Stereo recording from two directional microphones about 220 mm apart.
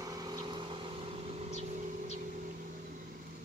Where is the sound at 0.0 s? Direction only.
15° right (ahead or behind).